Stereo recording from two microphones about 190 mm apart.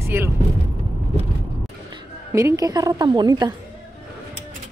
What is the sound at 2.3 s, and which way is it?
A woman's voice, 15° right (ahead or behind).